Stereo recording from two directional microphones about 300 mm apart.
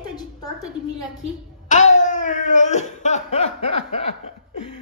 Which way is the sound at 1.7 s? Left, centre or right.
Left.